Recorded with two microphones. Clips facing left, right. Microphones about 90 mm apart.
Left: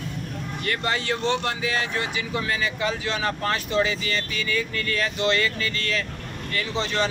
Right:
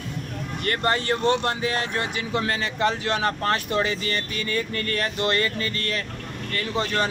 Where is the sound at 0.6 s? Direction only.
45° right (ahead or behind).